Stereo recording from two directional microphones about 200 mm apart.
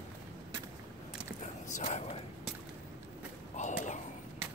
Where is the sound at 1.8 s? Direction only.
35° left (ahead or behind).